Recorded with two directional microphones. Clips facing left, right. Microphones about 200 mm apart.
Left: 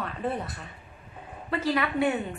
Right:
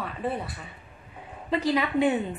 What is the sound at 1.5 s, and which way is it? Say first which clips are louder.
Speech: right 2 dB; 15° right (ahead or behind).